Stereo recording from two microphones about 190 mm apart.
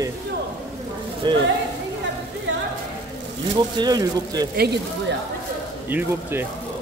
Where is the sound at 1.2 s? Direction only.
25° right (ahead or behind).